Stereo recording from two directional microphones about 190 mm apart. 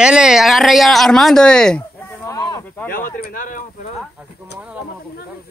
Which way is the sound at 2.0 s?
15° left (ahead or behind).